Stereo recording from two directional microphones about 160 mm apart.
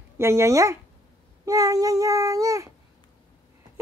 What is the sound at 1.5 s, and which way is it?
Child singing, 20° right (ahead or behind).